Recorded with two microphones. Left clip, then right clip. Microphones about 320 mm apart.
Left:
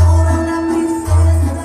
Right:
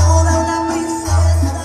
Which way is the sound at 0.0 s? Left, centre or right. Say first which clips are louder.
Right 3 dB; right.